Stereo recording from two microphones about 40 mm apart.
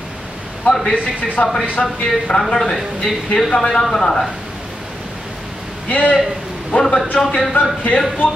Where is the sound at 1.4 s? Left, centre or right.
Left.